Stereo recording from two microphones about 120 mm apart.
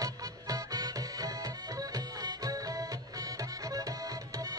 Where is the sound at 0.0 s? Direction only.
30° right (ahead or behind).